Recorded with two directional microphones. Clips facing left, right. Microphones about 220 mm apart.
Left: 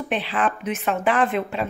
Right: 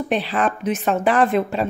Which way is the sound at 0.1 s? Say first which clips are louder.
Right 2 dB; 40° right (ahead or behind).